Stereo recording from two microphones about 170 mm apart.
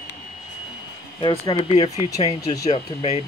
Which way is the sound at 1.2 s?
30° left (ahead or behind).